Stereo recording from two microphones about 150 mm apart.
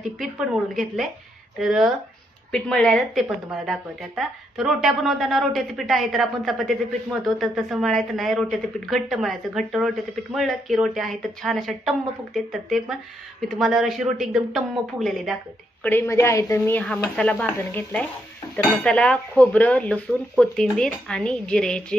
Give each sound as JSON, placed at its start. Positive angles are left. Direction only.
{"t": 0.2, "sound": "speech", "side_deg": 0}
{"t": 15.8, "sound": "speech", "side_deg": 15}
{"t": 16.8, "sound": "speech", "side_deg": 5}